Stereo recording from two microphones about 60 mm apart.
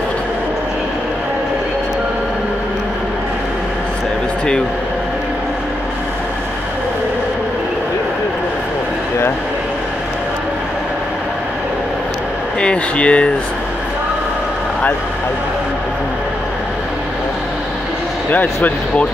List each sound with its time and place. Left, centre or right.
12.5 s air conditioning: centre
18.3 s speech: left